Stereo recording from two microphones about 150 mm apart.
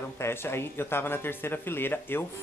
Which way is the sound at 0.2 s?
15° left (ahead or behind).